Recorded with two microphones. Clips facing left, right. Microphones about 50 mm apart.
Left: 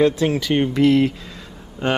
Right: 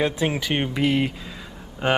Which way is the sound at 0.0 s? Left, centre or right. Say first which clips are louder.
Left 6 dB; centre.